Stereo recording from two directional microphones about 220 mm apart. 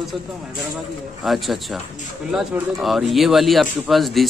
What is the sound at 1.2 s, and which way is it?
A man's voice, centre (ahead or behind).